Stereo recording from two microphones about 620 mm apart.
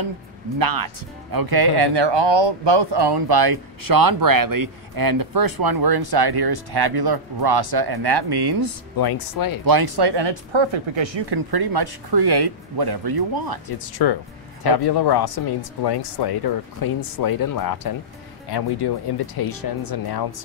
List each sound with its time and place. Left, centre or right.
0.6 s speech: right
8.9 s speech: left
9.7 s speech: right
14.0 s speech: left